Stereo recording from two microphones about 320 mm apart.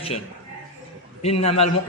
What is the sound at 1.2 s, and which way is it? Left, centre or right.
Speech, centre.